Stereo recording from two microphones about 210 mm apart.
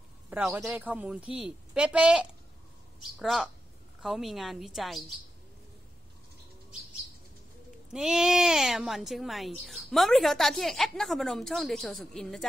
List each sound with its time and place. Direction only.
0.3 s a woman's voice: 5° right (ahead or behind)
7.9 s a woman's voice: 5° right (ahead or behind)